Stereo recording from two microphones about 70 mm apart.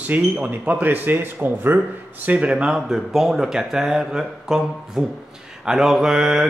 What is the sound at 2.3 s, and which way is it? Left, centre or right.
Speech, centre.